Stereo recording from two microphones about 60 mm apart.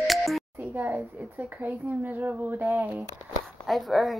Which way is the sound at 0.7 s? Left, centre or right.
Right.